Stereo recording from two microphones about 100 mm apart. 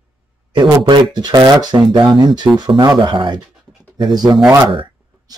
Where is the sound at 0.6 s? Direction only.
45° right (ahead or behind).